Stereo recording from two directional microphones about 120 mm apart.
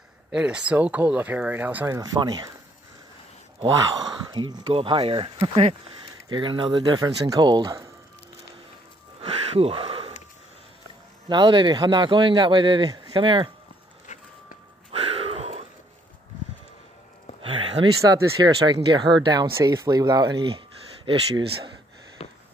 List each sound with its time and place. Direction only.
0.3 s speech: 10° right (ahead or behind)
2.0 s a man's voice: 35° right (ahead or behind)
3.7 s a man's voice: 35° right (ahead or behind)
9.2 s a sound: 50° right (ahead or behind)
11.2 s a man's voice: 40° right (ahead or behind)
14.9 s a sound: 50° right (ahead or behind)
18.0 s a man's voice: 30° right (ahead or behind)
19.5 s a man's voice: 25° right (ahead or behind); by 21.7 s 45° right (ahead or behind)
22.2 s sniff: 55° left (ahead or behind)